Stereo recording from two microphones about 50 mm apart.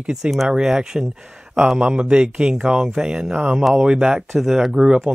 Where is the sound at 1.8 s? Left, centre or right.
Right.